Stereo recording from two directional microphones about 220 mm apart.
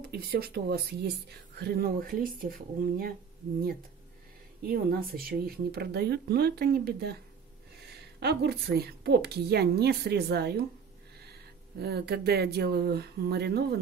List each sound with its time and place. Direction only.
0.0 s speech: 45° right (ahead or behind)
4.6 s speech: 40° right (ahead or behind)
8.2 s speech: 45° right (ahead or behind)
11.8 s speech: 45° right (ahead or behind)